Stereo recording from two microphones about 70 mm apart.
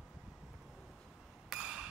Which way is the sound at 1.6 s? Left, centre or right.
Centre.